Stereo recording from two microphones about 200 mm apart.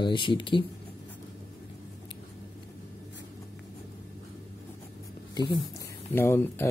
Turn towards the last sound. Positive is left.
turn(degrees=10)  # may be behind; listen again after turning